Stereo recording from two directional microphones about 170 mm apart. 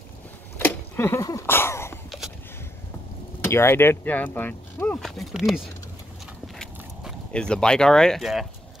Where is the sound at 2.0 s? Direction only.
Centre (ahead or behind).